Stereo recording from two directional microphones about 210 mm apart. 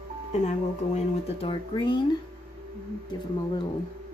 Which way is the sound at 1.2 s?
25° left (ahead or behind).